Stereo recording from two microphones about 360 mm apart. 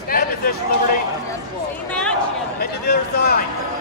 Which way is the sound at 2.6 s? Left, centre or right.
Left.